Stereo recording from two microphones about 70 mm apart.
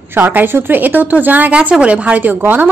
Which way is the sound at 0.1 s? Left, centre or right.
Right.